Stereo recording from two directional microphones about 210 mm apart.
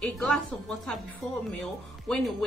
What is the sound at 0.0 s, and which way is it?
Speech, 5° left (ahead or behind).